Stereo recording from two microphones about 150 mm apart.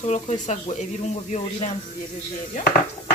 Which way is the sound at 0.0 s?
50° left (ahead or behind).